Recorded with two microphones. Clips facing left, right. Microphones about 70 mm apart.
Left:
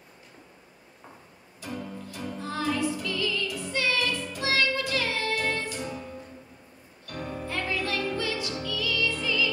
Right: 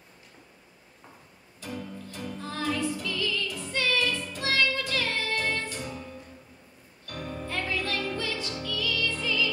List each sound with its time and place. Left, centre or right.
1.7 s music: centre
7.9 s music: centre
8.2 s music: centre